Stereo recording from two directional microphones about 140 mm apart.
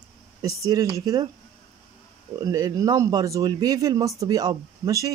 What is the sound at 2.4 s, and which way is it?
Speech, 25° right (ahead or behind).